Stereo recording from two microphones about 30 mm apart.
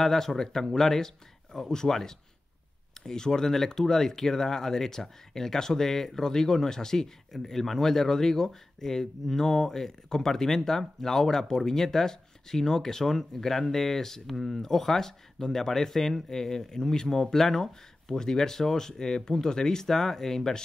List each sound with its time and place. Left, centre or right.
0.0 s speech: centre
3.1 s speech: centre
7.3 s speech: centre